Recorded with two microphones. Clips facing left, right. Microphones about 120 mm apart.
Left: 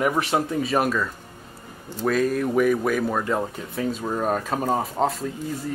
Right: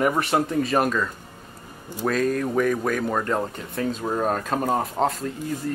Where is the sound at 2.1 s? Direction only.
5° left (ahead or behind).